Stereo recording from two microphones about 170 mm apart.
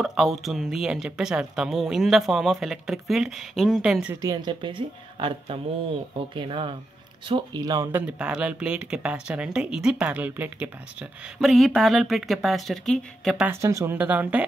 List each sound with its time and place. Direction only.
0.0 s speech: centre (ahead or behind)
4.2 s speech: 20° right (ahead or behind)
8.2 s speech: 5° right (ahead or behind)
13.5 s speech: 15° right (ahead or behind)